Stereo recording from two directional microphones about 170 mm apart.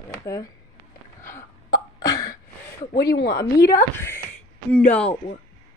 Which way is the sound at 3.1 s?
70° left (ahead or behind).